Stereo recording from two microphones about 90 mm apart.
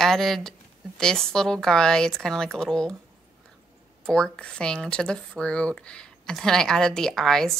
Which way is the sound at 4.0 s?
5° left (ahead or behind).